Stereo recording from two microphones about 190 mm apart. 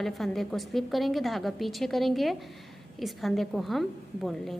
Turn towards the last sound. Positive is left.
turn(degrees=0)  # may be behind; listen again after turning